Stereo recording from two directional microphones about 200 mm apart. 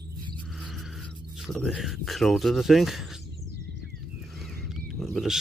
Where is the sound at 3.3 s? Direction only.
60° right (ahead or behind).